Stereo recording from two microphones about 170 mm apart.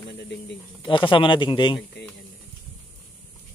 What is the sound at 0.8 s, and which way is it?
Speech, 30° left (ahead or behind).